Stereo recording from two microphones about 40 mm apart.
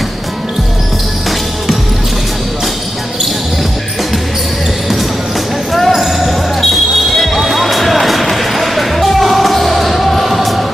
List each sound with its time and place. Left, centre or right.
5.9 s basketball bounce: centre